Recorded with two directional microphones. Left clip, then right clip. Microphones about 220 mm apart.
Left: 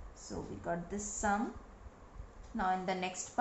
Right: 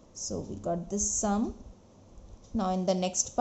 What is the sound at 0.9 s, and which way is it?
Speech, 45° right (ahead or behind).